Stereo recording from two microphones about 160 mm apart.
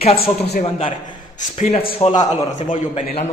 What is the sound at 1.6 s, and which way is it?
Speech, 40° left (ahead or behind).